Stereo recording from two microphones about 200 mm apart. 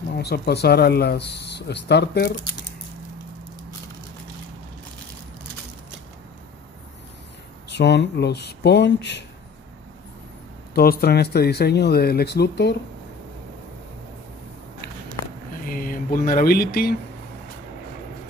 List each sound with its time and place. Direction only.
0.2 s speech: 55° left (ahead or behind)
7.7 s speech: 60° left (ahead or behind)
10.7 s speech: 50° left (ahead or behind)
15.6 s a sound: 45° left (ahead or behind)